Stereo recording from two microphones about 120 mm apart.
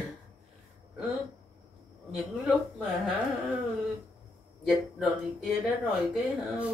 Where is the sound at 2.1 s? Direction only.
Centre (ahead or behind).